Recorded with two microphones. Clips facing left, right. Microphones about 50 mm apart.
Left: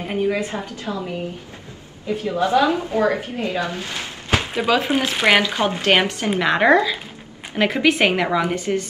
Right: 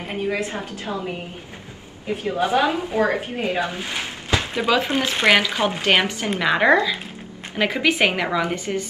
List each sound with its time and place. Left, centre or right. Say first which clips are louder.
0.0 s a woman's voice: left 3 dB; centre
2.0 s a woman's voice: left 2 dB; right
4.6 s a woman's voice: left 1 dB; centre